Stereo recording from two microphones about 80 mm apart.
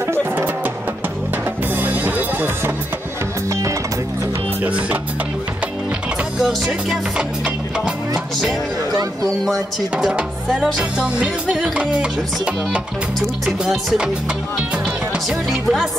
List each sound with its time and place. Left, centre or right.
0.0 s music: right
1.8 s music: right
4.6 s music: centre
6.4 s music: centre
9.4 s music: centre
13.5 s speech: centre
15.1 s speech: centre